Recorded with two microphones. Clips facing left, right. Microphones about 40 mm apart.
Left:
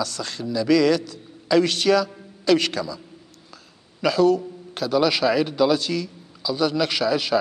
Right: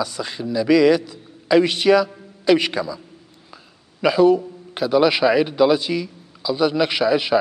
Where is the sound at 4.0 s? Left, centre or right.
Centre.